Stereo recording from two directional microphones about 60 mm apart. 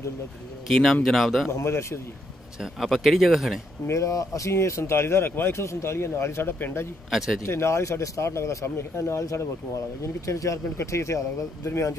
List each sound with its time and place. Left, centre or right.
0.7 s speech: centre
1.5 s speech: left
2.6 s speech: centre
3.8 s speech: left
7.1 s speech: centre
7.4 s speech: left